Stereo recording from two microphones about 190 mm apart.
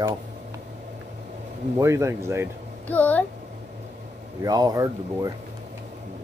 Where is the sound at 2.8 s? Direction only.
10° left (ahead or behind).